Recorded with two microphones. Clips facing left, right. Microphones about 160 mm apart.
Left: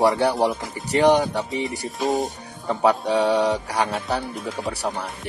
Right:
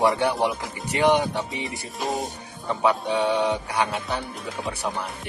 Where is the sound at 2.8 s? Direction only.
40° left (ahead or behind).